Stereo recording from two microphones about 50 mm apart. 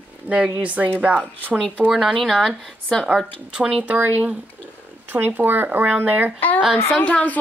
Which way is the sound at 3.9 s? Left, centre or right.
Right.